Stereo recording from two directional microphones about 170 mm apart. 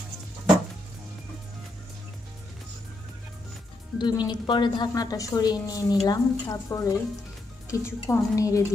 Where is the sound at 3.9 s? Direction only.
25° left (ahead or behind).